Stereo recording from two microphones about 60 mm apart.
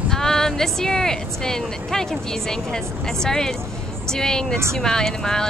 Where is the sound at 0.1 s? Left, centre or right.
Centre.